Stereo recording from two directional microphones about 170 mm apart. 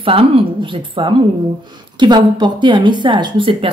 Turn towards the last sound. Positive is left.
turn(degrees=-30)  # may be behind; listen again after turning